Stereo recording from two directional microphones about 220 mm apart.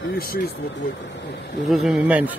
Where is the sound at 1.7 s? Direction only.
Centre (ahead or behind).